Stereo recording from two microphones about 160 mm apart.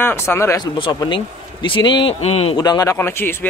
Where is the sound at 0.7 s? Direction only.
30° left (ahead or behind).